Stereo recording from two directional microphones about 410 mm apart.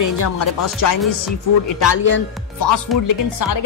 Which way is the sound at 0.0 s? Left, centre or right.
Left.